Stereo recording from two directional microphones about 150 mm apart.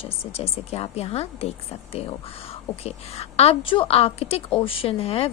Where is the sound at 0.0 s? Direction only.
40° left (ahead or behind).